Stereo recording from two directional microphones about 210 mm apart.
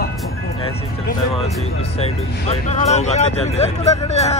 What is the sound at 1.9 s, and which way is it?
Speech, 30° left (ahead or behind).